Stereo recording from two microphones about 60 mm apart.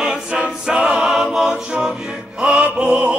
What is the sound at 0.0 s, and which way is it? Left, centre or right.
A capella, centre.